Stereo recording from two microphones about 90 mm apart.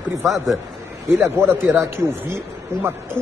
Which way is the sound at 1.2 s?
25° right (ahead or behind).